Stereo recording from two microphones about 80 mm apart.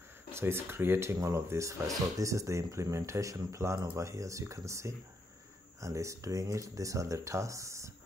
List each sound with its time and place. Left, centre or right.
0.3 s speech: right